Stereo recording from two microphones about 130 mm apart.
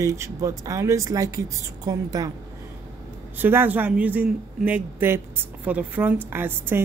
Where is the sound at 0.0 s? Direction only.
25° right (ahead or behind).